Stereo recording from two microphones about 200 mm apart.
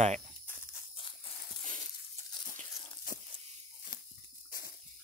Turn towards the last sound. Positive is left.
turn(degrees=45)  # may be behind; listen again after turning